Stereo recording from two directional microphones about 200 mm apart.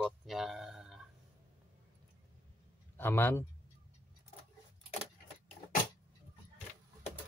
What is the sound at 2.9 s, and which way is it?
Speech, 10° left (ahead or behind).